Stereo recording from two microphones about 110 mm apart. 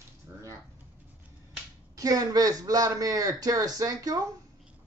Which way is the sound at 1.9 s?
35° right (ahead or behind).